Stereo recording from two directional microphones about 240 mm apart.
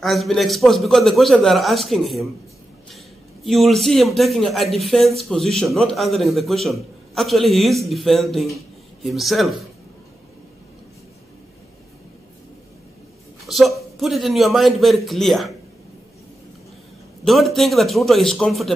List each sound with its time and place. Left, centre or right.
0.0 s a man's voice: centre
3.4 s a man's voice: centre
13.5 s a man's voice: centre
17.2 s a man's voice: centre